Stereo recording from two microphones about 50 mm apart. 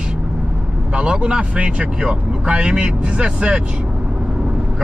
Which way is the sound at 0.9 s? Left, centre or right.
Right.